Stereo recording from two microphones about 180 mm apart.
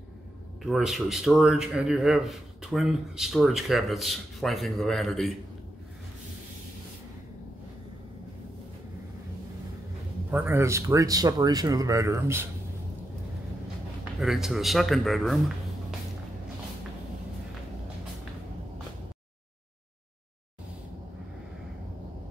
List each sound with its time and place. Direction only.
0.6 s a man's voice: centre (ahead or behind)
10.3 s speech: 10° right (ahead or behind)
14.2 s a man's voice: centre (ahead or behind)